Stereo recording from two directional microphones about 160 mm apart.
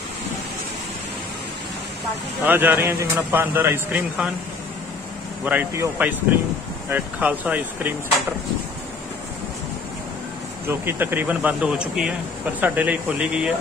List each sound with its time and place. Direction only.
2.4 s a man's voice: 10° right (ahead or behind)
5.4 s a man's voice: 10° right (ahead or behind)
10.7 s a man's voice: 15° right (ahead or behind)